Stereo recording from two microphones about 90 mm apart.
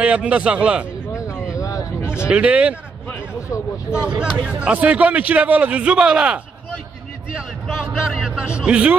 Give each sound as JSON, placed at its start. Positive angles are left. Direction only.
{"t": 0.0, "sound": "a man's voice", "side_deg": -15}
{"t": 1.1, "sound": "a sound", "side_deg": 35}
{"t": 1.6, "sound": "vehicle", "side_deg": 40}
{"t": 2.1, "sound": "a man's voice", "side_deg": -10}
{"t": 3.5, "sound": "speech", "side_deg": 30}
{"t": 4.6, "sound": "a man's voice", "side_deg": -15}